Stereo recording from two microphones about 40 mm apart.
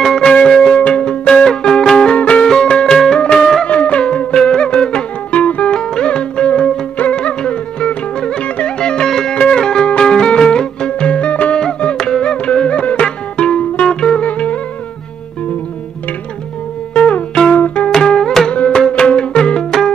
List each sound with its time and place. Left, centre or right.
0.0 s music: centre
0.5 s church bell: centre
0.7 s music: left; by 3.6 s centre
3.6 s music: left
5.8 s music: left
8.7 s music: left
12.0 s music: left
14.2 s music: left
16.9 s music: left
17.8 s music: centre